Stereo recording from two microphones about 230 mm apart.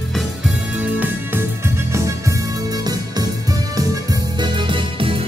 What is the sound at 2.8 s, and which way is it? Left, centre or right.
Music, centre.